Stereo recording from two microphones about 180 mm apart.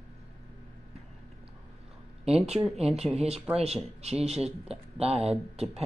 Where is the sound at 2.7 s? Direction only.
35° right (ahead or behind).